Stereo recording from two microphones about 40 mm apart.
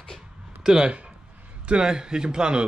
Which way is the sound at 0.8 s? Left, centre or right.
Right.